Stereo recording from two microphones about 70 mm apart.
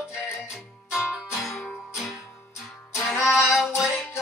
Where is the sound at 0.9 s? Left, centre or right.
Centre.